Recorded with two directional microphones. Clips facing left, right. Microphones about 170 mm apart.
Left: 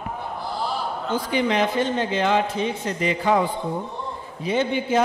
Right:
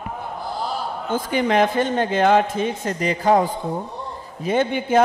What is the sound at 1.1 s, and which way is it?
A man's voice, 50° right (ahead or behind).